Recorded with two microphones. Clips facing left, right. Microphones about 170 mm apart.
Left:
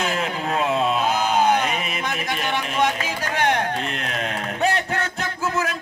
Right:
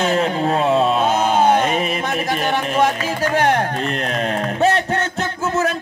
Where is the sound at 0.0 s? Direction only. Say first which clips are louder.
Right 7 dB; 35° right (ahead or behind).